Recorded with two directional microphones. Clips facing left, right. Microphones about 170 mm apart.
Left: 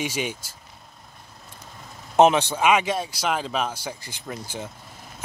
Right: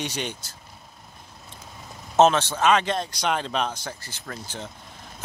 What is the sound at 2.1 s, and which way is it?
Speech, 15° left (ahead or behind).